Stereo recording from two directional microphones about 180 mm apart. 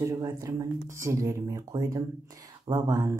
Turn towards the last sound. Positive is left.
turn(degrees=-20)  # may be behind; listen again after turning